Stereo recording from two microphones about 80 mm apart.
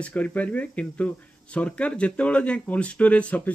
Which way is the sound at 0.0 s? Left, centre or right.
Centre.